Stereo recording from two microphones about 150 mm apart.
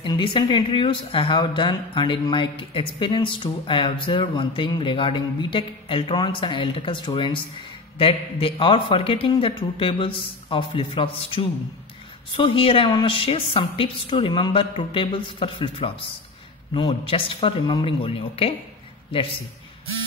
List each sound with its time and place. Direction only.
0.0 s speech: 30° left (ahead or behind)